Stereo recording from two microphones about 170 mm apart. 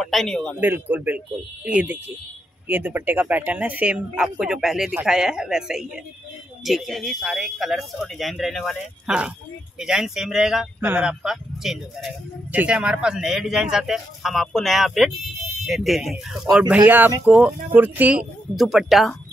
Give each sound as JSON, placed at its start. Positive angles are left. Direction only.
{"t": 0.0, "sound": "speech", "side_deg": 0}
{"t": 0.6, "sound": "speech", "side_deg": -10}